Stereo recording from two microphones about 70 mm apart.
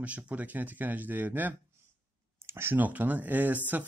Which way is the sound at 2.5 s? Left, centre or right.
Right.